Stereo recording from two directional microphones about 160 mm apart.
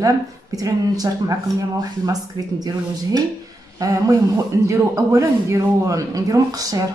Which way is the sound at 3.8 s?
20° right (ahead or behind).